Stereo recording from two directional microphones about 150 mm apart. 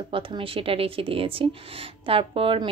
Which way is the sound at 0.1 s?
35° right (ahead or behind).